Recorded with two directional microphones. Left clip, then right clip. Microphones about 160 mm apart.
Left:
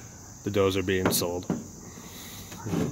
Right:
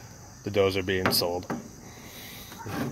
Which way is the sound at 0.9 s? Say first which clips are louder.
Right 1 dB; 20° left (ahead or behind).